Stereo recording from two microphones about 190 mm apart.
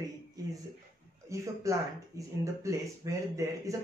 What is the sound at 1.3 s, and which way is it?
Speech, 15° right (ahead or behind).